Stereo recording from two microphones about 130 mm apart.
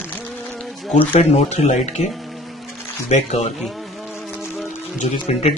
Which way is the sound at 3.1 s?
60° left (ahead or behind).